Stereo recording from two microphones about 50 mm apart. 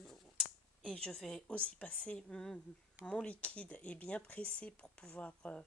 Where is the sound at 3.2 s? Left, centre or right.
Left.